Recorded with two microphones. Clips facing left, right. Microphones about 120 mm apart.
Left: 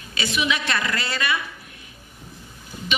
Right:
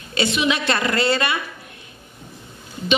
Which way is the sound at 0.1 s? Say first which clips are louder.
Right 4 dB; 25° right (ahead or behind).